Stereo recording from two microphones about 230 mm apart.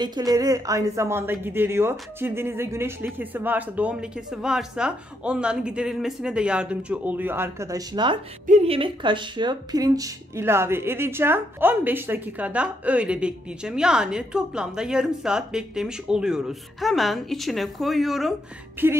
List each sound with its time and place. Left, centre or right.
0.0 s speech: centre